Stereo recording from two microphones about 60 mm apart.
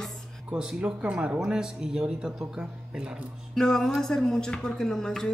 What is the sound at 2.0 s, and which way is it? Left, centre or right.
Speech, centre.